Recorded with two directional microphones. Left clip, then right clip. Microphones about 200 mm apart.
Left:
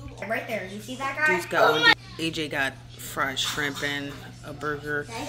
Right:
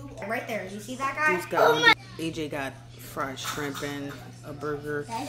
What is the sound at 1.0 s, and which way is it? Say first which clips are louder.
Speech: left 1 dB; 5° right (ahead or behind).